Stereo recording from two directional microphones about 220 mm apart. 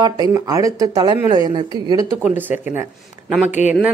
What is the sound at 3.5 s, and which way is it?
Speech, 30° left (ahead or behind).